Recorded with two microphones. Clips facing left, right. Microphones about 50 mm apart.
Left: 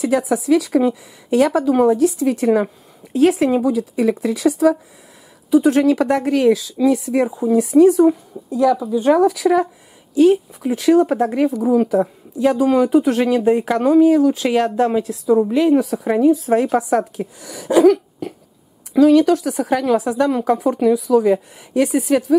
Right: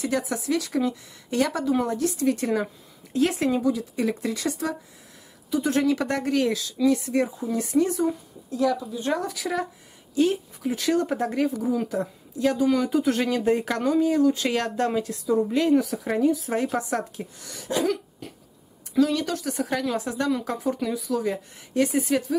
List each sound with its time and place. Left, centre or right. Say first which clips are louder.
0.0 s a woman's voice: left 9 dB; centre
2.5 s a woman's voice: left 8 dB; centre
7.2 s speech: left 11 dB; centre
7.5 s a woman's voice: left 12 dB; centre
8.1 s a woman's voice: left 10 dB; centre